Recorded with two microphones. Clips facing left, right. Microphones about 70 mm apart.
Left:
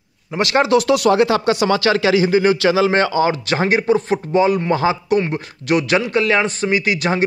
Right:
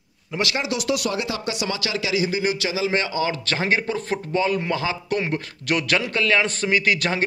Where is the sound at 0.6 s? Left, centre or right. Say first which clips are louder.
Left 12 dB; left.